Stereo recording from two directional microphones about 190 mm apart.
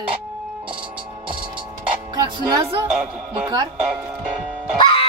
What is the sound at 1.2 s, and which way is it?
Music, 25° right (ahead or behind).